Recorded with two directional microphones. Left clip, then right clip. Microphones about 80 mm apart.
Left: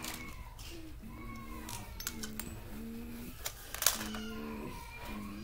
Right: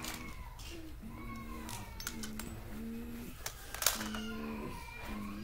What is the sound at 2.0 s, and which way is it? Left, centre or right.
Music, left.